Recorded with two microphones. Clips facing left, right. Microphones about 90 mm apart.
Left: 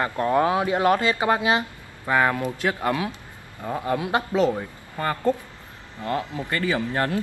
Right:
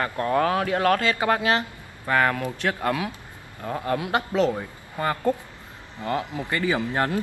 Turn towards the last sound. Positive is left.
turn(degrees=-20)  # may be behind; listen again after turning